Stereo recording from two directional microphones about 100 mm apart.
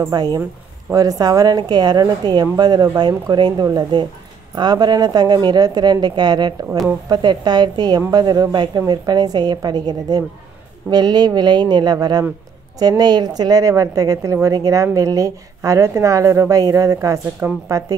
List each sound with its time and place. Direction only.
0.0 s a woman's voice: 40° right (ahead or behind)